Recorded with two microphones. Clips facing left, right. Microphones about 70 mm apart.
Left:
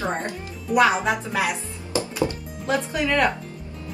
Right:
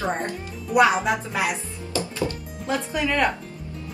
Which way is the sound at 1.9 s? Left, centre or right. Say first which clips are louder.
Left 2 dB; left.